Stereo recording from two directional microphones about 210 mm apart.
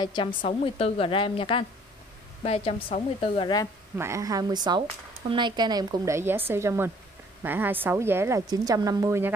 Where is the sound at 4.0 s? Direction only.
15° right (ahead or behind).